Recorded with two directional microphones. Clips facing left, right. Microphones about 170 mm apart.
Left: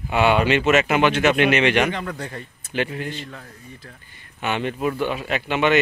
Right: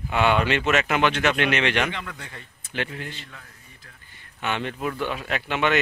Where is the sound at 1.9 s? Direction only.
40° left (ahead or behind).